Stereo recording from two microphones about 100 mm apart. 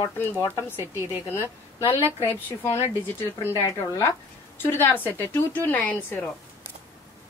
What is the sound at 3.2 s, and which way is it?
A woman's voice, 30° left (ahead or behind).